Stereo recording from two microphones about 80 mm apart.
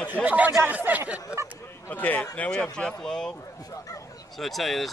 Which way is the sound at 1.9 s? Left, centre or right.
Left.